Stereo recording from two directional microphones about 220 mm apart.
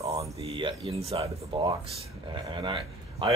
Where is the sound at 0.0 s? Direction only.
30° right (ahead or behind).